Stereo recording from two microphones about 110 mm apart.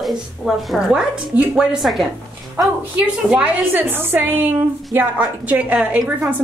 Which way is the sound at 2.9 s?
15° right (ahead or behind).